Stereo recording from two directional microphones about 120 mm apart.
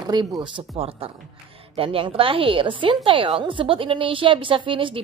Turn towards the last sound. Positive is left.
turn(degrees=-45)  # may be behind; listen again after turning